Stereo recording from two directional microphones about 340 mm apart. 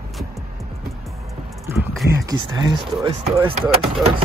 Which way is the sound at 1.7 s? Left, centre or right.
Centre.